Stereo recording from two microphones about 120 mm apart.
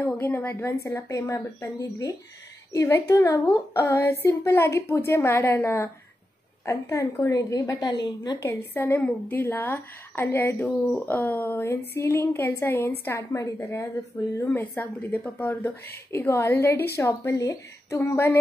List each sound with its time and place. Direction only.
0.0 s a woman's voice: 20° left (ahead or behind); by 8.4 s 35° left (ahead or behind)
8.4 s a woman's voice: 20° left (ahead or behind)